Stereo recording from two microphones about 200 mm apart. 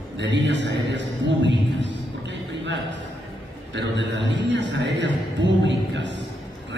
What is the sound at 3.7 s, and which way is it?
A man's voice, 60° right (ahead or behind).